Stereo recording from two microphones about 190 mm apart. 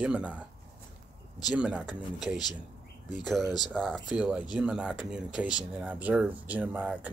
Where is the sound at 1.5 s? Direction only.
5° right (ahead or behind).